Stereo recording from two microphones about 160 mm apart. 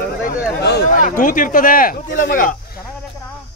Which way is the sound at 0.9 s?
55° left (ahead or behind).